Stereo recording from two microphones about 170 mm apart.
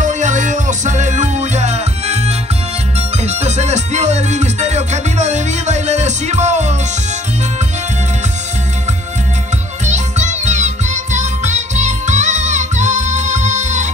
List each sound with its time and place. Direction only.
0.0 s music: 45° right (ahead or behind)
9.8 s music: 45° right (ahead or behind)